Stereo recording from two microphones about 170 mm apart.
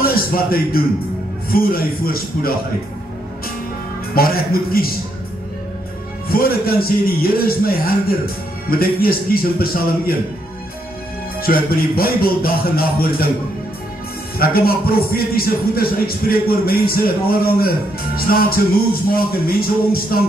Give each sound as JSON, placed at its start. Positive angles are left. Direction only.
{"t": 0.0, "sound": "a man's voice", "side_deg": 60}
{"t": 4.1, "sound": "speech", "side_deg": 60}
{"t": 6.2, "sound": "speech", "side_deg": 60}
{"t": 11.4, "sound": "speech", "side_deg": 60}
{"t": 14.4, "sound": "speech", "side_deg": 60}